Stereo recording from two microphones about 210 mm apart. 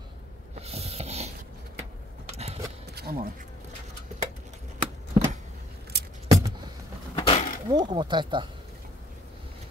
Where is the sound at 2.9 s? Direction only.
45° right (ahead or behind).